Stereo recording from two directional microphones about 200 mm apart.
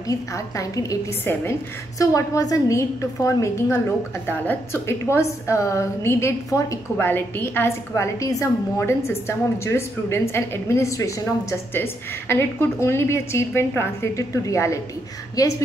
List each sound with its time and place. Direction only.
0.1 s a woman's voice: 15° left (ahead or behind)